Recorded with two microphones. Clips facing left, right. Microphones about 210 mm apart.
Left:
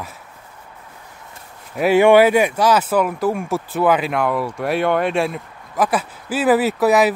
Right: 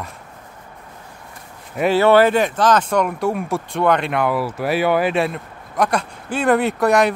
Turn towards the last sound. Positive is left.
turn(degrees=5)  # may be behind; listen again after turning